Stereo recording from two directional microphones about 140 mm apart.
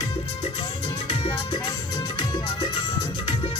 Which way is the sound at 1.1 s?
40° left (ahead or behind).